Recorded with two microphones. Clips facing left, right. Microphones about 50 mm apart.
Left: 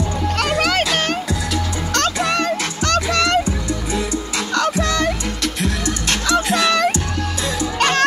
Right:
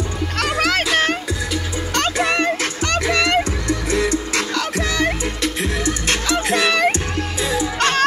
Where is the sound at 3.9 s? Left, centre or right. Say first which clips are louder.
Right 4 dB; right.